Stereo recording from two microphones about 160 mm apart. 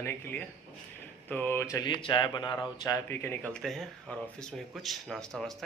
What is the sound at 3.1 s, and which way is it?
Speech, 15° left (ahead or behind).